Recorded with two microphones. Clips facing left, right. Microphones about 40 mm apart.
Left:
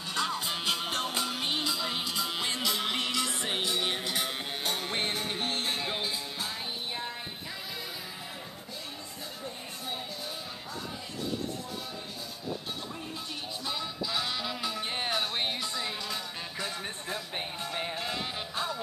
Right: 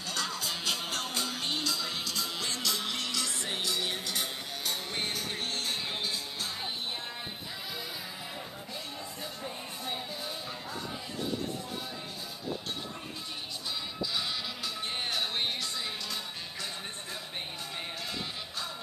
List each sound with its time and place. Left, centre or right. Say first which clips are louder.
0.1 s music: left 3 dB; left
5.8 s music: left 2 dB; centre
13.7 s music: left 2 dB; centre
17.7 s music: left 4 dB; left